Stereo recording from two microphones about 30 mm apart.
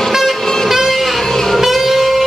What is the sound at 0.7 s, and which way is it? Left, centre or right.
Music, centre.